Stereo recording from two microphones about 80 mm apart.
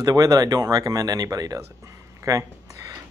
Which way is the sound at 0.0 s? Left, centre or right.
Right.